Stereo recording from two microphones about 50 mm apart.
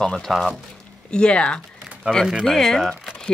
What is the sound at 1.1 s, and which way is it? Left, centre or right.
Speech, left.